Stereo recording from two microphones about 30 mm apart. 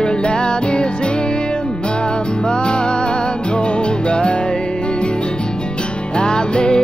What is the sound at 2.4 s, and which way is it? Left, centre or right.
Music, left.